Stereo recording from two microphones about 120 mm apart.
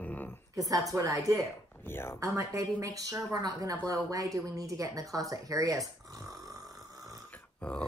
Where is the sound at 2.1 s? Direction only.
25° right (ahead or behind).